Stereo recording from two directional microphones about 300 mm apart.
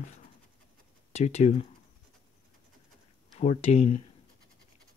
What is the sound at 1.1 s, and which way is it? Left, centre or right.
Speech, left.